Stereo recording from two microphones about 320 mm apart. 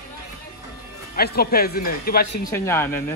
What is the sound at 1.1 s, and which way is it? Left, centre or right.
Speech, left.